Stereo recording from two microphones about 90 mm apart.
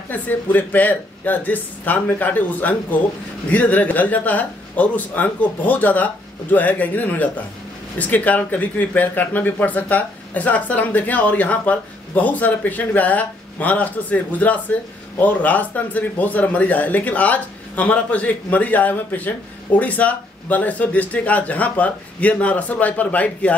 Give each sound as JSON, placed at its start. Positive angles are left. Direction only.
{"t": 0.1, "sound": "speech", "side_deg": 20}